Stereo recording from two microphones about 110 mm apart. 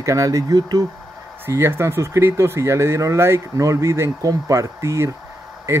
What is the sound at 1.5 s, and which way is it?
Speech, 25° right (ahead or behind).